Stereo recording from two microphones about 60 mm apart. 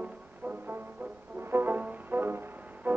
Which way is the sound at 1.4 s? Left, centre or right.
Right.